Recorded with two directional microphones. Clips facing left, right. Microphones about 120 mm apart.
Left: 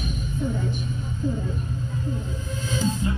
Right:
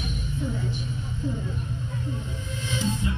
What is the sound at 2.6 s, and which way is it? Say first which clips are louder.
Music: left 3 dB; 40° left (ahead or behind).